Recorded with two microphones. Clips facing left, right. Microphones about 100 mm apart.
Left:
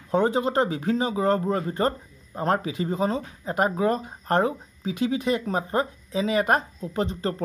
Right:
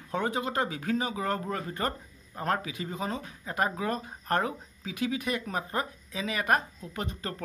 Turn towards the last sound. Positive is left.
turn(degrees=30)  # may be behind; listen again after turning